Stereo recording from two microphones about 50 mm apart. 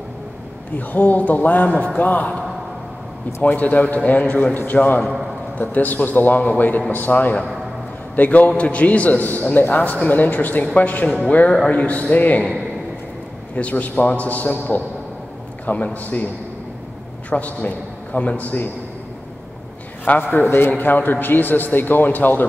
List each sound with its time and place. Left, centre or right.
0.7 s a man's voice: left
3.4 s a man's voice: left
13.6 s a man's voice: left
17.3 s a man's voice: left
20.1 s a man's voice: left